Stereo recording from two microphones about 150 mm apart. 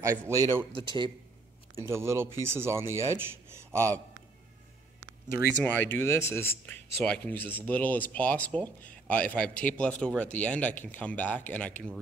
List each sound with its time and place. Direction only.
0.0 s speech: 15° right (ahead or behind)
0.7 s a man's voice: 30° right (ahead or behind)
1.8 s speech: 20° right (ahead or behind)
5.6 s speech: 10° left (ahead or behind)